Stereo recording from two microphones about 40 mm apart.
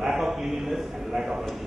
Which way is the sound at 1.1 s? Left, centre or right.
Centre.